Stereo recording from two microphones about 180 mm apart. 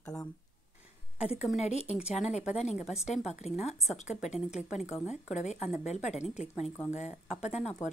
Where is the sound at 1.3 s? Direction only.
40° left (ahead or behind).